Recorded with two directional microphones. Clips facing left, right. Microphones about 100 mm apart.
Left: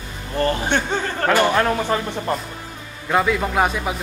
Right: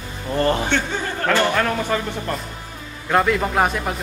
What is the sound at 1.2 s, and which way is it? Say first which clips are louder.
Speech: left 2 dB; 15° left (ahead or behind).